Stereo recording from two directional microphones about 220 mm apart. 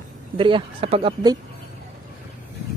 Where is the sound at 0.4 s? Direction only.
20° right (ahead or behind).